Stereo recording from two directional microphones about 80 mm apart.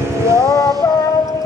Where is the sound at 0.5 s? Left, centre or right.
Left.